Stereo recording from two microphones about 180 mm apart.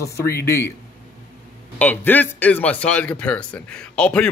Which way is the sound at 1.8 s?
10° left (ahead or behind).